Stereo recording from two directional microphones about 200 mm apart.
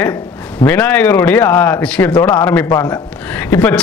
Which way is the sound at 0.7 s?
10° left (ahead or behind).